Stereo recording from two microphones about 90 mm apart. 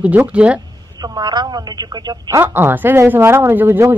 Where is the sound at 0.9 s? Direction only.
50° right (ahead or behind).